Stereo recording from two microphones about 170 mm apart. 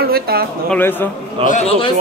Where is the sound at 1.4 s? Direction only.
35° right (ahead or behind).